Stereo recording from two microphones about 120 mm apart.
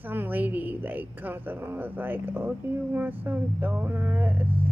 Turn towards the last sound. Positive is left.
turn(degrees=-15)  # may be behind; listen again after turning